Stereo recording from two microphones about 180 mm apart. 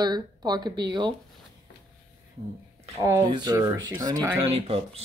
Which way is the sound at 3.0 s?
20° right (ahead or behind).